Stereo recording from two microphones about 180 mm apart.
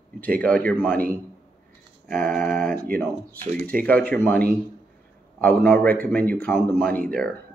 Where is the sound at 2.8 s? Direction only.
55° right (ahead or behind).